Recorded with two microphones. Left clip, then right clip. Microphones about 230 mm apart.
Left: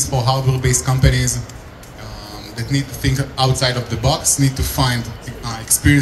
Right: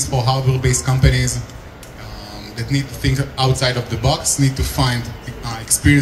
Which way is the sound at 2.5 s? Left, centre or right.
Left.